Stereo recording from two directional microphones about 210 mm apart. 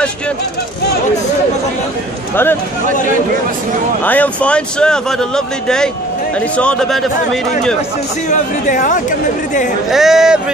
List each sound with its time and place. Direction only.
4.0 s a man's voice: 5° left (ahead or behind)
8.3 s speech: 40° left (ahead or behind)
9.8 s a man's voice: centre (ahead or behind)